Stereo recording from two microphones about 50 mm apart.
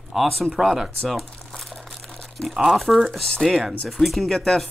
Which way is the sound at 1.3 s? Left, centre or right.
Centre.